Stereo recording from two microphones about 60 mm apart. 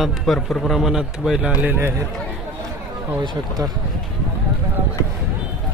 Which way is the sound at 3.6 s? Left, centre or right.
Right.